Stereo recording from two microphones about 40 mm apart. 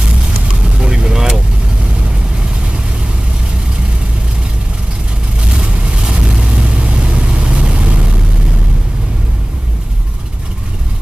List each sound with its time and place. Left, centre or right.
0.7 s vehicle: right
5.5 s vehicle: right